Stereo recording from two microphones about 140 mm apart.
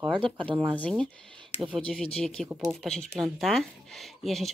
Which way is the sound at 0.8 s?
5° left (ahead or behind).